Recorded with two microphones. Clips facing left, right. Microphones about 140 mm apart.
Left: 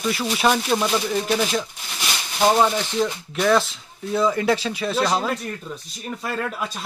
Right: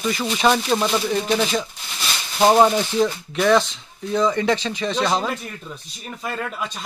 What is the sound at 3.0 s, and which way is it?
Speech, centre (ahead or behind).